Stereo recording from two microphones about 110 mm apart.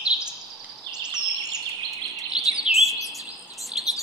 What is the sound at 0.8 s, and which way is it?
Bird vocalization, 5° right (ahead or behind).